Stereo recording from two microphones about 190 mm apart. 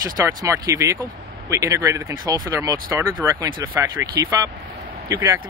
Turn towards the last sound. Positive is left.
turn(degrees=-15)  # may be behind; listen again after turning